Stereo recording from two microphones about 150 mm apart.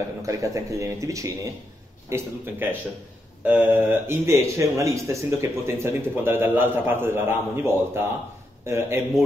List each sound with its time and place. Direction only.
0.2 s speech: 20° right (ahead or behind)